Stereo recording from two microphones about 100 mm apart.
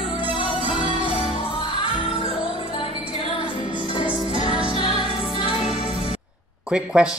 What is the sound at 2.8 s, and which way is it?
Music, 70° left (ahead or behind).